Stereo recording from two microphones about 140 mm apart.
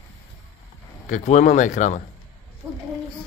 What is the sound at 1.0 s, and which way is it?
Speech, 65° left (ahead or behind).